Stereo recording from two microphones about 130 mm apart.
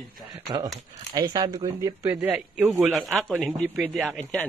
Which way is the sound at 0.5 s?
30° right (ahead or behind).